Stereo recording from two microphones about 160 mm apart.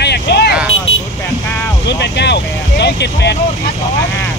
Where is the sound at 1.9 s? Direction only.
90° left.